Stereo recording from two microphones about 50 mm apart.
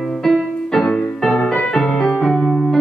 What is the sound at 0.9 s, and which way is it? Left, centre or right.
Music, centre.